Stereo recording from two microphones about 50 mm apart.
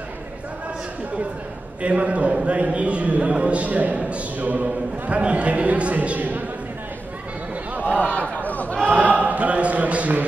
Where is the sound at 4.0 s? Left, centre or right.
Right.